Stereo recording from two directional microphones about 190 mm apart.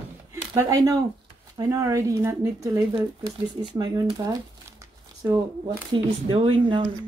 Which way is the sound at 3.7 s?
20° right (ahead or behind).